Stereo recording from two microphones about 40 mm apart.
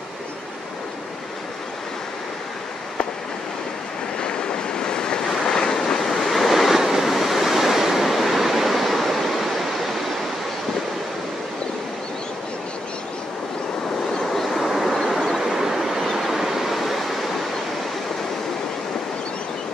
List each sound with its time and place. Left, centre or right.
4.2 s waves: left
5.3 s vehicle: centre
5.9 s waves: centre
14.3 s vehicle: centre
15.3 s vehicle: centre